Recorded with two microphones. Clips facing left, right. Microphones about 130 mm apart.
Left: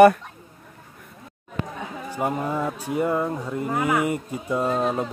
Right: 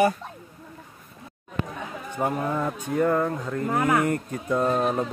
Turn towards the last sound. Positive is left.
turn(degrees=5)  # may be behind; listen again after turning